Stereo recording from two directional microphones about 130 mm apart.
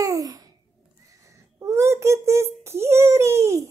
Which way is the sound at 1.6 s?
20° right (ahead or behind).